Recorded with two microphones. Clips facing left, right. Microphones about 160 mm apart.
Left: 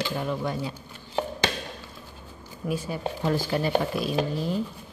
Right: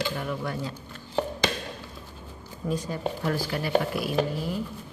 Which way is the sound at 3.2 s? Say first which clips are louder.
Left 6 dB; 25° left (ahead or behind).